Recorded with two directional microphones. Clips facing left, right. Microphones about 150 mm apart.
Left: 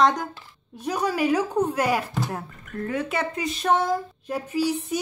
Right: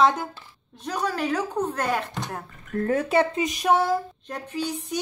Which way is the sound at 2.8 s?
40° right (ahead or behind).